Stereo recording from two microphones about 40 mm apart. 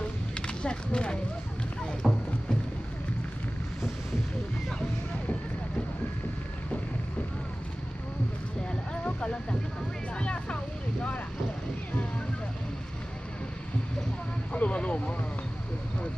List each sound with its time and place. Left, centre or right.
0.3 s a sound: left
2.0 s rowboat: centre
9.0 s music: left
10.1 s vehicle: left
14.5 s vehicle: left